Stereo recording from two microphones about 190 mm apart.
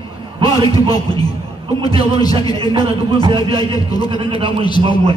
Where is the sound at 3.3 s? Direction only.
20° left (ahead or behind).